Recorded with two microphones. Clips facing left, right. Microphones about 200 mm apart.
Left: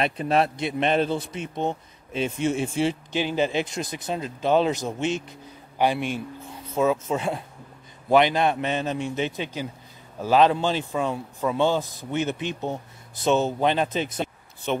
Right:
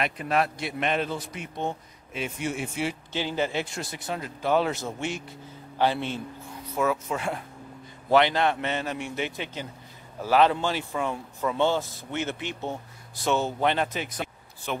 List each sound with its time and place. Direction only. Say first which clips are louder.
0.0 s a man's voice: left 4 dB; 30° left (ahead or behind)
3.1 s a man's voice: left 4 dB; 15° left (ahead or behind)